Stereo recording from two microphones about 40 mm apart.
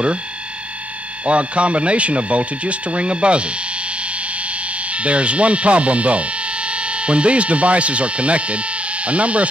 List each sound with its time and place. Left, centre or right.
1.2 s speech: right
4.8 s speech: right